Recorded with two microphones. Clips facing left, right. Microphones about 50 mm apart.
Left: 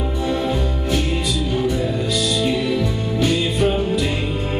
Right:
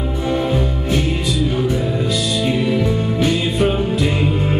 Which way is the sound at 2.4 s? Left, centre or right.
Right.